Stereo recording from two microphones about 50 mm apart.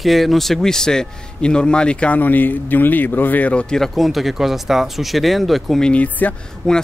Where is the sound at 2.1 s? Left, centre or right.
Left.